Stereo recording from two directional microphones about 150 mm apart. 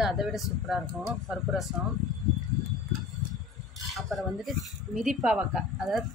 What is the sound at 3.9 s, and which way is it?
Speech, centre (ahead or behind).